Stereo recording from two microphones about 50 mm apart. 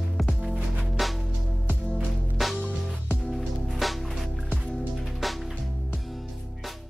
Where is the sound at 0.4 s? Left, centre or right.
Right.